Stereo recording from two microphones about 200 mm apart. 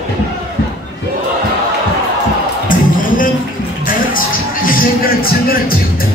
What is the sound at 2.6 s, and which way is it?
Music, 40° left (ahead or behind).